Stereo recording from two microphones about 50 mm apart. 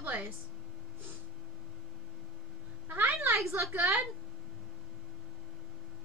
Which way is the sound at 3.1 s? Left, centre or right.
Right.